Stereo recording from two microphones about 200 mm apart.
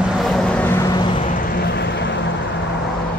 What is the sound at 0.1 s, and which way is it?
Vehicle, centre (ahead or behind).